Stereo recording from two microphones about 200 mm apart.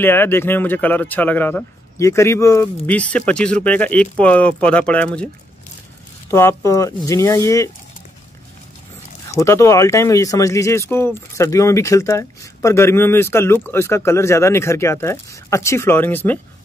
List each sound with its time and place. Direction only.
0.0 s speech: 10° left (ahead or behind)
6.3 s speech: 15° left (ahead or behind)
9.3 s speech: 15° left (ahead or behind)